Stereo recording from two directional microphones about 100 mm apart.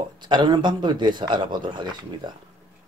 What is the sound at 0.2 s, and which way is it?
Speech, 50° right (ahead or behind).